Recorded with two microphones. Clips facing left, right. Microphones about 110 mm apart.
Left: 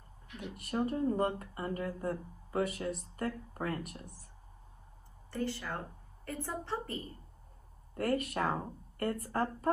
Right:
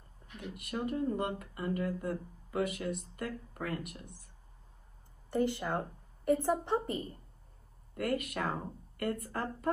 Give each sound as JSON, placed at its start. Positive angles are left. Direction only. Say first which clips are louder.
{"t": 0.6, "sound": "speech", "louder": "left 2 dB", "side_deg": 35}
{"t": 5.3, "sound": "speech", "louder": "right 5 dB", "side_deg": -20}
{"t": 7.9, "sound": "speech", "louder": "left 1 dB", "side_deg": 35}